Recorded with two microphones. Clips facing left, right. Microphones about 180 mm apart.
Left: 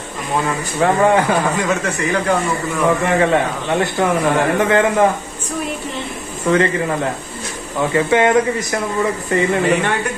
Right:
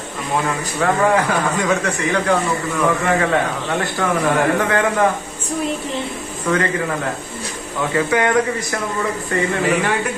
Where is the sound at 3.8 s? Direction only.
20° left (ahead or behind).